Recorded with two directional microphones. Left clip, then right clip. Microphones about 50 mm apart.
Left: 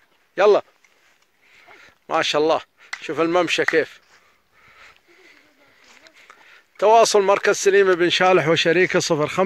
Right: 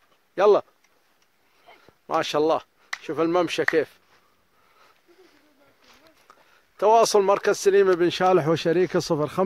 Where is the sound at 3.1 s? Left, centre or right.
Centre.